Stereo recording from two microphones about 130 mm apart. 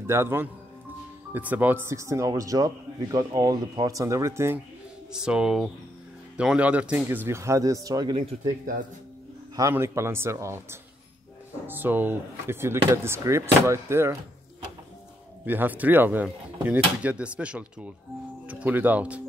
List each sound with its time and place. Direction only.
0.0 s speech: 20° right (ahead or behind)
5.1 s speech: 5° right (ahead or behind); by 8.2 s 30° right (ahead or behind)
9.6 s speech: 20° right (ahead or behind)
15.4 s speech: 15° right (ahead or behind)